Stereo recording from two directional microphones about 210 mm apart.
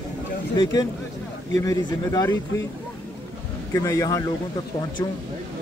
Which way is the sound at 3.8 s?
15° left (ahead or behind).